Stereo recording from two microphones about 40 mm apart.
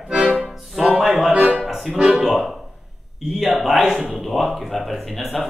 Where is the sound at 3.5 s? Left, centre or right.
Centre.